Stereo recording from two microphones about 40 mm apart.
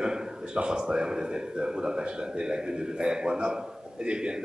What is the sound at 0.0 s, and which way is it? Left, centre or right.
A man's voice, centre.